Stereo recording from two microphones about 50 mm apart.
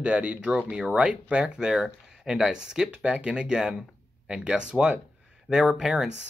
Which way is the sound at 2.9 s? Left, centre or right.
Right.